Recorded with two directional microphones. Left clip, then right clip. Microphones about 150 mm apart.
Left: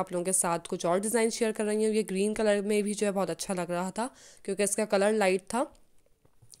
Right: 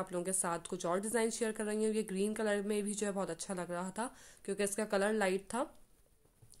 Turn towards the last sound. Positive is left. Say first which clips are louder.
# left 8 dB
turn(degrees=40)  # may be behind; listen again after turning